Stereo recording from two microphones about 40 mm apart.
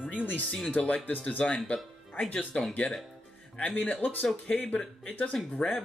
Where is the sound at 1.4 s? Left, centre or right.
Centre.